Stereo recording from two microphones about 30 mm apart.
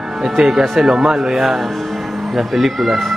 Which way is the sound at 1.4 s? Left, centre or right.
Centre.